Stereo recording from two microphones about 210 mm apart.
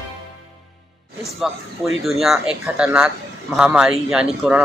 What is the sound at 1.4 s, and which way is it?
Speech, centre (ahead or behind).